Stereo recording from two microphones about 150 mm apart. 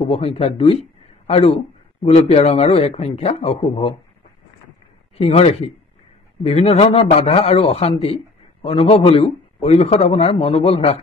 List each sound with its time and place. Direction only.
0.0 s a man's voice: 40° left (ahead or behind)
5.1 s a man's voice: 45° left (ahead or behind)